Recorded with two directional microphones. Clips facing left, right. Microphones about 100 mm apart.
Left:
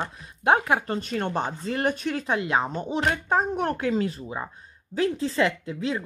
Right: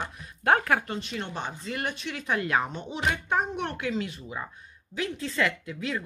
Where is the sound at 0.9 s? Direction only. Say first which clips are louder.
Left 7 dB; 45° left (ahead or behind).